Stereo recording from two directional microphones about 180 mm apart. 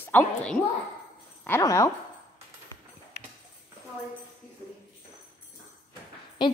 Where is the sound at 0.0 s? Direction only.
10° left (ahead or behind).